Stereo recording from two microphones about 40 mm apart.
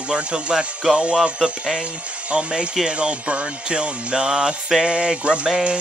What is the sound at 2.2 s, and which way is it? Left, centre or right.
Music, right.